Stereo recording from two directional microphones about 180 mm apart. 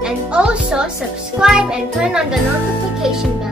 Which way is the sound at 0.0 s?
5° right (ahead or behind).